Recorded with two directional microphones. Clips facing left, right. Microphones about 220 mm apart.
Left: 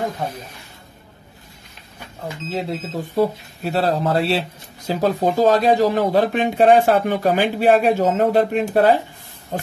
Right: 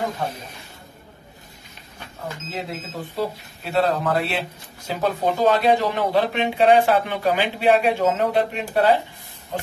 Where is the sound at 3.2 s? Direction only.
40° left (ahead or behind).